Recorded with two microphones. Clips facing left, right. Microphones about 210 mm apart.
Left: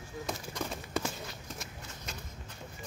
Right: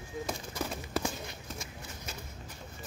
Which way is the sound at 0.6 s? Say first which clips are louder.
Right 1 dB; centre (ahead or behind).